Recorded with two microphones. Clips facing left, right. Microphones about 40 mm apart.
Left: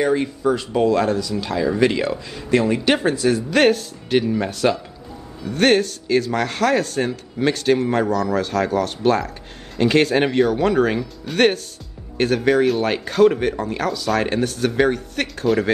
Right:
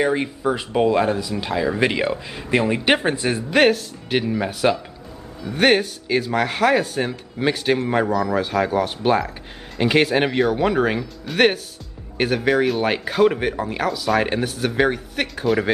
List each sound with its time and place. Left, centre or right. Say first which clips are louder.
0.0 s speech: left 1 dB; centre
3.5 s speech: right 3 dB; centre